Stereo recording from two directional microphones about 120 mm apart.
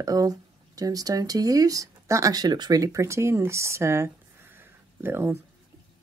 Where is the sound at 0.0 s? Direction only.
30° right (ahead or behind).